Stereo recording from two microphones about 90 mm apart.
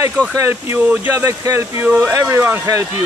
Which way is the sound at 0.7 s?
20° right (ahead or behind).